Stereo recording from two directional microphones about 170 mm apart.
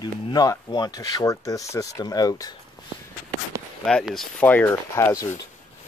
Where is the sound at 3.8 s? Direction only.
5° left (ahead or behind).